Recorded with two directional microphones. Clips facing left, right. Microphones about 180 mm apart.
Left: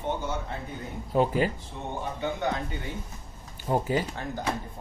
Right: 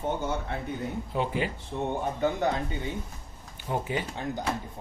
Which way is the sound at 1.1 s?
40° left (ahead or behind).